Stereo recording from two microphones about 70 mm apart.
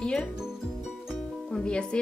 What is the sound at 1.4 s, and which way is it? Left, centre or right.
Music, centre.